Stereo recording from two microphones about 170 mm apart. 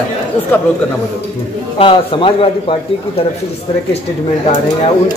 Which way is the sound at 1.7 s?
30° left (ahead or behind).